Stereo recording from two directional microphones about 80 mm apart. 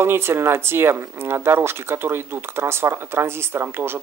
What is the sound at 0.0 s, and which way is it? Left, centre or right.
Speech, right.